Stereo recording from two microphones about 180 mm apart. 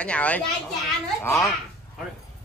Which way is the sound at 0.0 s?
5° left (ahead or behind).